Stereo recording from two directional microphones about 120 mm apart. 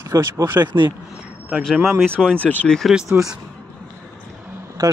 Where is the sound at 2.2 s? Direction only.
10° left (ahead or behind).